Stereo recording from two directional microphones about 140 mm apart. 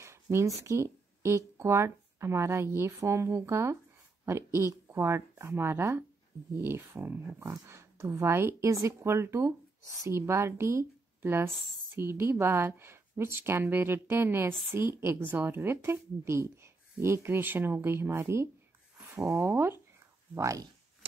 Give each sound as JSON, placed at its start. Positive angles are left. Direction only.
{"t": 0.0, "sound": "speech", "side_deg": -20}